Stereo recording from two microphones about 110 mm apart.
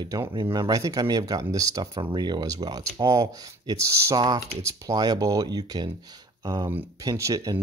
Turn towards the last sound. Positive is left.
turn(degrees=-30)  # may be behind; listen again after turning